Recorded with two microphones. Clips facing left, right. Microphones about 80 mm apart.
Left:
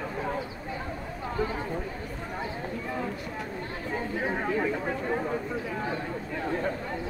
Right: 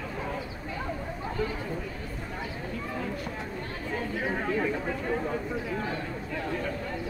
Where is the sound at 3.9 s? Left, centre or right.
Left.